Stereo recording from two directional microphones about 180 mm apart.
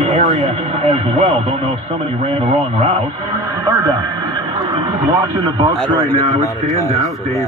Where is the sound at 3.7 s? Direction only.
20° right (ahead or behind).